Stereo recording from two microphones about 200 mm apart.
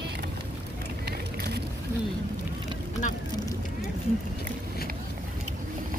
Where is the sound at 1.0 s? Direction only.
50° right (ahead or behind).